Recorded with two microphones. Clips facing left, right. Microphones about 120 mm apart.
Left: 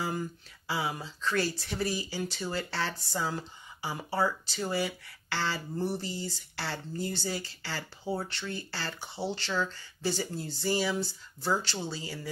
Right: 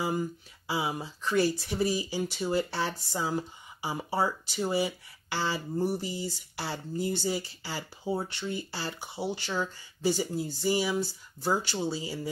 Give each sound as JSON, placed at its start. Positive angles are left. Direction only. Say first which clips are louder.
{"t": 0.0, "sound": "speech", "louder": "right 3 dB", "side_deg": -15}